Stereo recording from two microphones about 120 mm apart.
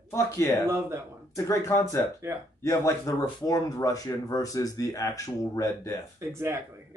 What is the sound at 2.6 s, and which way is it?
Speech, 25° left (ahead or behind).